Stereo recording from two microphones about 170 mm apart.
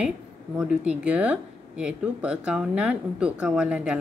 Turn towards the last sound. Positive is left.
turn(degrees=-5)  # may be behind; listen again after turning